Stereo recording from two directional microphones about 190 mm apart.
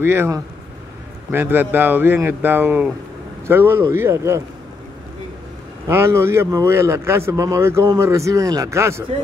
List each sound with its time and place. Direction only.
0.0 s speech: 10° right (ahead or behind)
5.9 s speech: 15° right (ahead or behind)